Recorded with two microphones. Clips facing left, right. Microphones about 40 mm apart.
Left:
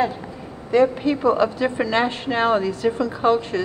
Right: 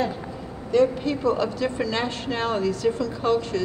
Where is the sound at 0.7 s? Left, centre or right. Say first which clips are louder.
Left 3 dB; left.